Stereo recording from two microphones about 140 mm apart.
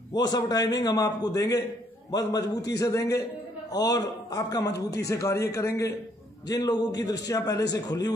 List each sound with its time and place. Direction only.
0.1 s a man's voice: 30° left (ahead or behind)